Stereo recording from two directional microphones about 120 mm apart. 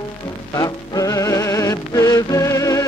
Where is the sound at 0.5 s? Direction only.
30° left (ahead or behind).